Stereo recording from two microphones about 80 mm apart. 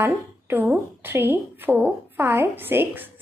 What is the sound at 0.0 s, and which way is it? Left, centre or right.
A woman's voice, right.